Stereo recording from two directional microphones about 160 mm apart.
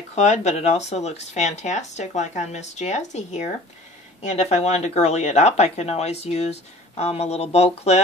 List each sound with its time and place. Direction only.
0.1 s speech: 45° left (ahead or behind)